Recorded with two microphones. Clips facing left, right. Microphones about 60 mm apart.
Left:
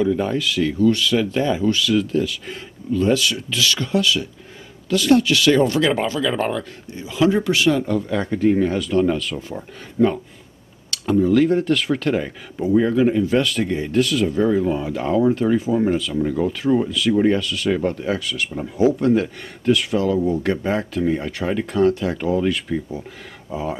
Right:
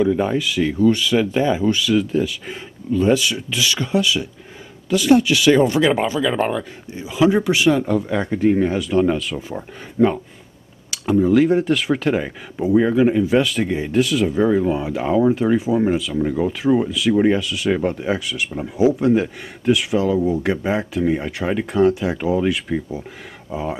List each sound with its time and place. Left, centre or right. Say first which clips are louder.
0.0 s speech: right 2 dB; centre